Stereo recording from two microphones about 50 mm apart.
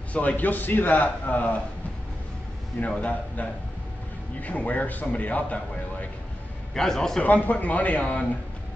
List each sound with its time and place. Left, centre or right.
0.1 s a man's voice: left
3.0 s a man's voice: left
6.7 s a man's voice: centre
7.2 s a man's voice: left